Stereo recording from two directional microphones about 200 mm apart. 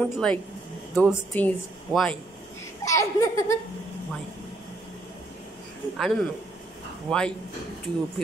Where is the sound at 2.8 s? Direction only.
15° left (ahead or behind).